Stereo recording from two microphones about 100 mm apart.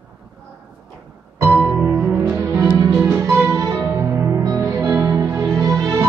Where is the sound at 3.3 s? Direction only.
25° right (ahead or behind).